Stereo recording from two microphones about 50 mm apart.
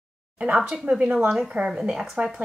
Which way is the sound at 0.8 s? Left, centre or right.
Centre.